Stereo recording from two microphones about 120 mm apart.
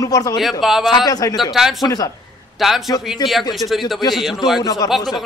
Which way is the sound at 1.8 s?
30° left (ahead or behind).